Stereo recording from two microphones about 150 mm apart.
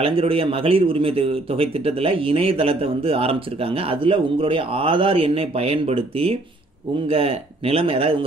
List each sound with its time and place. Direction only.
0.0 s speech: 40° right (ahead or behind)